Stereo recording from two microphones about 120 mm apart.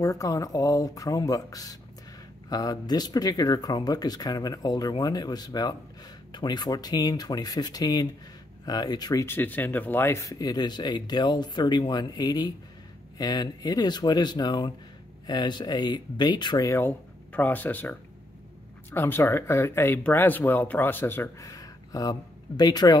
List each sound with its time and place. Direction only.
0.0 s speech: 30° left (ahead or behind)
9.2 s speech: 15° left (ahead or behind)
16.8 s speech: 15° left (ahead or behind); by 22.9 s 35° left (ahead or behind)